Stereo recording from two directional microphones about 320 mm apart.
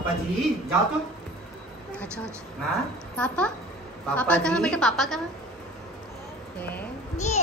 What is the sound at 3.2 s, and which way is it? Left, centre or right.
A woman's voice, centre.